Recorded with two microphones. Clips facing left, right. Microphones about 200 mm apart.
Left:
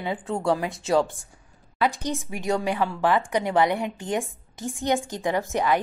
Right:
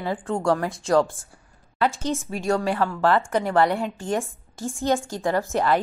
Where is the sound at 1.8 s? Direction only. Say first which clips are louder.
Right 1 dB; 15° left (ahead or behind).